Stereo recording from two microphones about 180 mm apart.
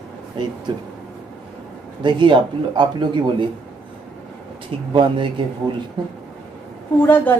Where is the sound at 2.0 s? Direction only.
25° right (ahead or behind).